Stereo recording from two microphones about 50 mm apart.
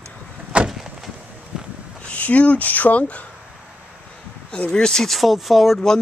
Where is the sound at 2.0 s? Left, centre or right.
Left.